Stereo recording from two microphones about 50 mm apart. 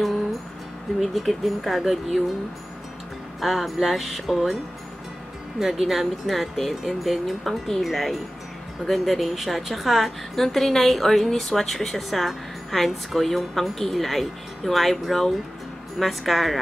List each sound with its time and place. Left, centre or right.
0.9 s speech: centre
3.3 s speech: centre
5.6 s speech: centre
10.3 s speech: centre